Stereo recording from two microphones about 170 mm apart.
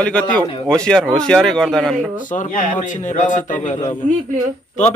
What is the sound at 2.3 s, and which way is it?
A man's voice, 50° left (ahead or behind).